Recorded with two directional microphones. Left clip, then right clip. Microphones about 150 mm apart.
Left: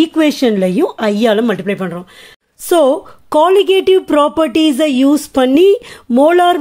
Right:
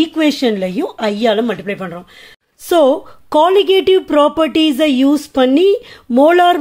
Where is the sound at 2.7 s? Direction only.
10° left (ahead or behind).